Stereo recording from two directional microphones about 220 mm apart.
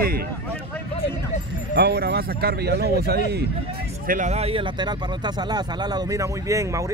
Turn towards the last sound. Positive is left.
turn(degrees=-15)  # may be behind; listen again after turning